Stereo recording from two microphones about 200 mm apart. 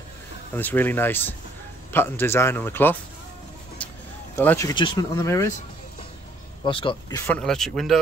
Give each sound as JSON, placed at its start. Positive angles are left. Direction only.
{"t": 0.6, "sound": "speech", "side_deg": 10}
{"t": 4.4, "sound": "speech", "side_deg": 10}
{"t": 6.6, "sound": "speech", "side_deg": 25}
{"t": 7.3, "sound": "speech", "side_deg": 0}